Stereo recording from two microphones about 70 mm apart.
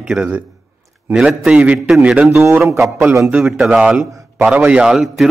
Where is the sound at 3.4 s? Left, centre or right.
Centre.